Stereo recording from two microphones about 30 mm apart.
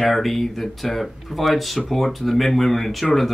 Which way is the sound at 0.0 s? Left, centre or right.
Centre.